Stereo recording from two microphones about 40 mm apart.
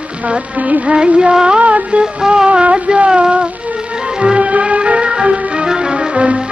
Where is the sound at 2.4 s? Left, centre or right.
Right.